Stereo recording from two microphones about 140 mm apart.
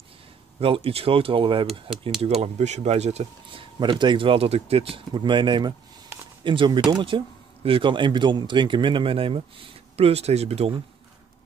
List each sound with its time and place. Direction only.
0.6 s speech: 40° right (ahead or behind)
1.7 s speech: centre (ahead or behind)
2.4 s speech: 55° right (ahead or behind)
3.8 s speech: 35° right (ahead or behind)